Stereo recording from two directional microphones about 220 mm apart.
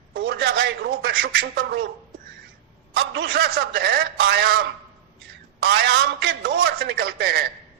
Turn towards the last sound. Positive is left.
turn(degrees=-45)  # may be behind; listen again after turning